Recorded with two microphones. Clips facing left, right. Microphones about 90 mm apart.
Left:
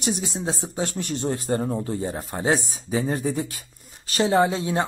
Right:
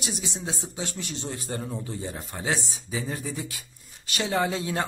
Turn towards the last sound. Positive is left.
turn(degrees=25)  # may be behind; listen again after turning